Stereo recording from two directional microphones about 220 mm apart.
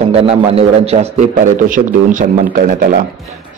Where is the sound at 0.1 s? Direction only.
25° right (ahead or behind).